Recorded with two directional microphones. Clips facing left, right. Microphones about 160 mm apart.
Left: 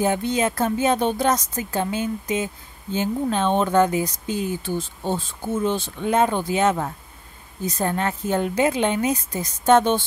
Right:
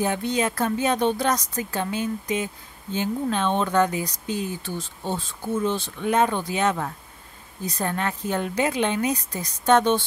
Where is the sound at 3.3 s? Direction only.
35° left (ahead or behind).